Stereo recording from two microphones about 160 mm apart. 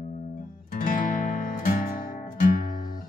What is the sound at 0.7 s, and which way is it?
Music, 55° left (ahead or behind).